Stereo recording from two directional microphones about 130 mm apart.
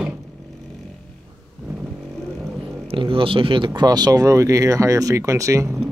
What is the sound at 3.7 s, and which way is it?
Speech, 30° right (ahead or behind).